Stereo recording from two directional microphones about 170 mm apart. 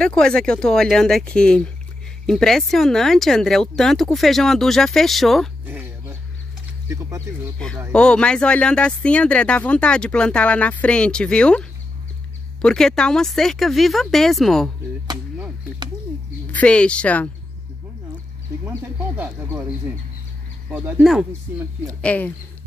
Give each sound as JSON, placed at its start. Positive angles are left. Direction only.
{"t": 0.0, "sound": "speech", "side_deg": 5}
{"t": 5.7, "sound": "dog", "side_deg": -15}
{"t": 6.9, "sound": "speech", "side_deg": -20}
{"t": 7.5, "sound": "speech", "side_deg": 5}
{"t": 12.6, "sound": "speech", "side_deg": 5}
{"t": 16.5, "sound": "speech", "side_deg": 5}
{"t": 18.7, "sound": "speech", "side_deg": -10}
{"t": 20.7, "sound": "speech", "side_deg": -5}
{"t": 21.3, "sound": "speech", "side_deg": -15}
{"t": 22.0, "sound": "speech", "side_deg": 10}